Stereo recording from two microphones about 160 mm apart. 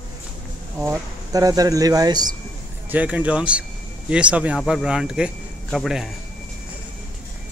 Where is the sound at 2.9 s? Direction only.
10° right (ahead or behind).